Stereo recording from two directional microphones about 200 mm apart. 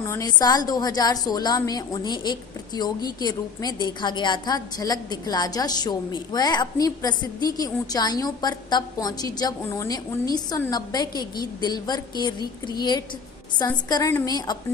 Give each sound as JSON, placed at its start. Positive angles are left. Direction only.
{"t": 0.0, "sound": "a woman's voice", "side_deg": 15}